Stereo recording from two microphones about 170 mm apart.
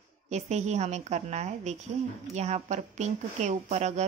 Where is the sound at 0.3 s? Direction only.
40° right (ahead or behind).